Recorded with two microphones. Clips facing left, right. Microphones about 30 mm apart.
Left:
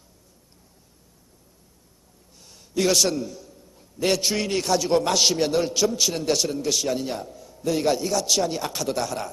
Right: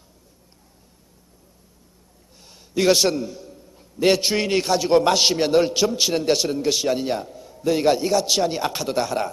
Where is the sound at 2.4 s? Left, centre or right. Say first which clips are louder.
Right 2 dB; right.